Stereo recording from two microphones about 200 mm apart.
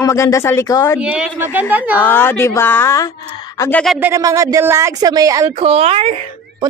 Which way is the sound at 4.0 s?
15° right (ahead or behind).